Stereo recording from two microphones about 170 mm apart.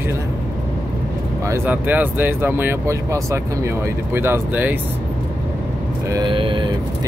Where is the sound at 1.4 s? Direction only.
15° right (ahead or behind).